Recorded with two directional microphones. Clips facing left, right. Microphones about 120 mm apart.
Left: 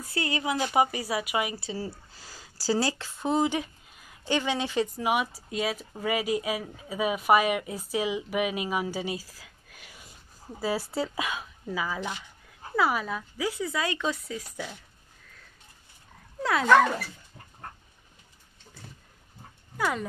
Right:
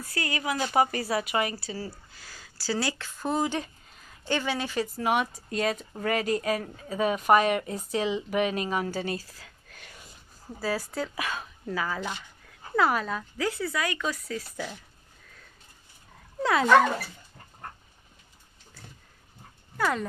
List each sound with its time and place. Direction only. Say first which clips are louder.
0.0 s speech: left 1 dB; 25° left (ahead or behind)
1.6 s speech: left 2 dB; 25° left (ahead or behind); by 10.0 s 10° left (ahead or behind)
10.6 s speech: left 1 dB; 25° left (ahead or behind)
11.2 s speech: even; 10° left (ahead or behind)
13.7 s speech: left 1 dB; 25° left (ahead or behind)
19.8 s speech: right 1 dB; 5° left (ahead or behind)